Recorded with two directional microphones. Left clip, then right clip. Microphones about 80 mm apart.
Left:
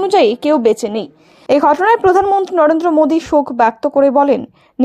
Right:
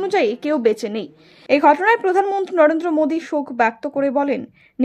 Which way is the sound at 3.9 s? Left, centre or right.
Left.